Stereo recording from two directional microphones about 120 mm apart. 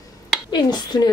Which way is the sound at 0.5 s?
35° left (ahead or behind).